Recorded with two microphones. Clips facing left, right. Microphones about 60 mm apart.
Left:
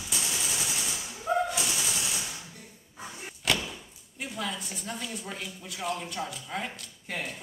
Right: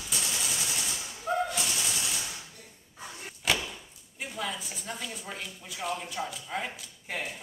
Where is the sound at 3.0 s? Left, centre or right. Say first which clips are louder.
Left 1 dB; centre.